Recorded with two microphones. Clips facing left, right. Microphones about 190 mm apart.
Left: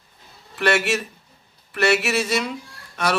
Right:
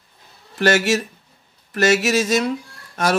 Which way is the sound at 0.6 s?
40° right (ahead or behind).